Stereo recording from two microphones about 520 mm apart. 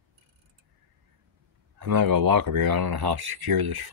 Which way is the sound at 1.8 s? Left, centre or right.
Right.